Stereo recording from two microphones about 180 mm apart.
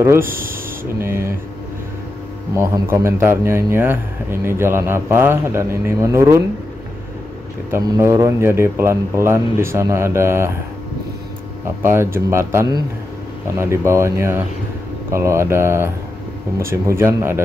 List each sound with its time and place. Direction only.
0.2 s speech: 50° right (ahead or behind)
0.9 s a man's voice: 15° right (ahead or behind)
2.5 s a man's voice: 15° right (ahead or behind)
7.7 s a man's voice: 15° right (ahead or behind)
11.8 s a man's voice: 15° right (ahead or behind)